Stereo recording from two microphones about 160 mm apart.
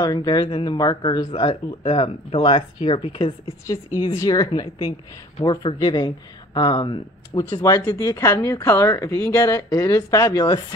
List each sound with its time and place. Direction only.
0.0 s speech: 25° left (ahead or behind)
1.3 s speech: 40° left (ahead or behind)
3.6 s speech: 20° left (ahead or behind)